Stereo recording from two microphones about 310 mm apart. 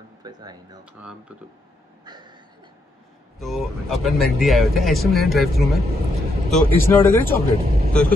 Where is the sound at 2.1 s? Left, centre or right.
Centre.